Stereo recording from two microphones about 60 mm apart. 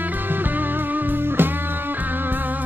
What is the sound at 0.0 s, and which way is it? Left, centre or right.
Music, right.